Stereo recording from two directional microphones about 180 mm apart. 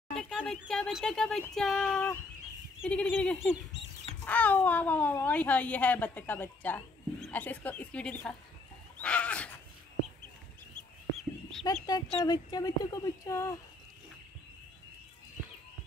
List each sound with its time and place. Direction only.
0.1 s speech: 5° left (ahead or behind)
2.8 s fowl: 5° left (ahead or behind)
4.3 s speech: 10° left (ahead or behind)
11.8 s speech: 20° left (ahead or behind)